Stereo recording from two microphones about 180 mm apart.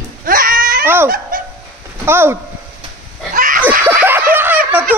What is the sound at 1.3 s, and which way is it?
Fowl, 50° right (ahead or behind).